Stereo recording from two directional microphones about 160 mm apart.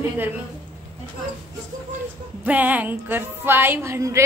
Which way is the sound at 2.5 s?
10° right (ahead or behind).